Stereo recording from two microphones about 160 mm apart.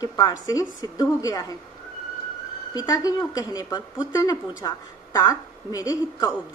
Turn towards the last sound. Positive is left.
turn(degrees=20)  # may be behind; listen again after turning